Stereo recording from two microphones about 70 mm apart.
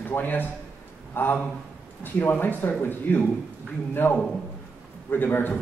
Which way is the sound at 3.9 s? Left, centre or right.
Left.